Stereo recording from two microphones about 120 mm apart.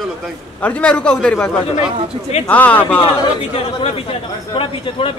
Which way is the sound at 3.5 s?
55° left (ahead or behind).